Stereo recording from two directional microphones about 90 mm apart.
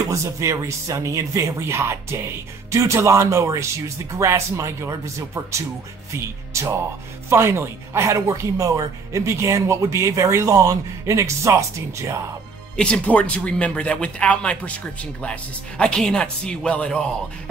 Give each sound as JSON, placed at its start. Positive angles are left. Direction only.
{"t": 0.1, "sound": "speech", "side_deg": -35}
{"t": 12.7, "sound": "speech", "side_deg": 10}
{"t": 15.8, "sound": "speech", "side_deg": 5}